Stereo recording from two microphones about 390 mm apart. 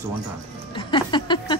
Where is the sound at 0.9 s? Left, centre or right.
Centre.